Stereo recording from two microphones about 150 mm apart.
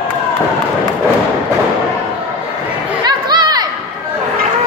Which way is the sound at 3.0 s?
30° right (ahead or behind).